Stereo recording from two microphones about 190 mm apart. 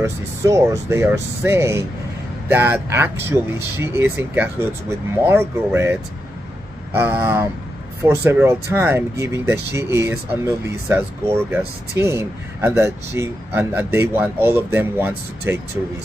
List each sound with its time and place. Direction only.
0.0 s speech: 15° right (ahead or behind)